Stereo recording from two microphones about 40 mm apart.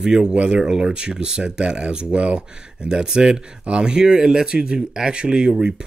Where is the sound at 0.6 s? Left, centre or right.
Centre.